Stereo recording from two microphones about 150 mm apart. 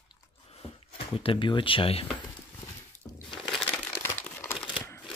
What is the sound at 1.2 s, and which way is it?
Speech, 35° left (ahead or behind).